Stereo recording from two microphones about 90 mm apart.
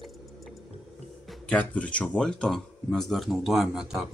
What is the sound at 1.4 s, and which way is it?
Speech, 15° left (ahead or behind).